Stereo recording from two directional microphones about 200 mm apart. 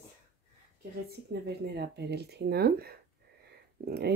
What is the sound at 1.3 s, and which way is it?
A woman's voice, 55° right (ahead or behind).